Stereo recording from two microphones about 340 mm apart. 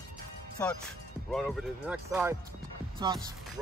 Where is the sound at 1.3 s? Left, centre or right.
Centre.